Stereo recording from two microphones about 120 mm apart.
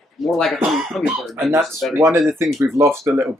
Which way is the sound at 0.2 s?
Centre (ahead or behind).